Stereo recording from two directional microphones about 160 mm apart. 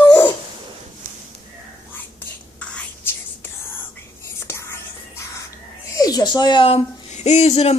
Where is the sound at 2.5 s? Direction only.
10° left (ahead or behind).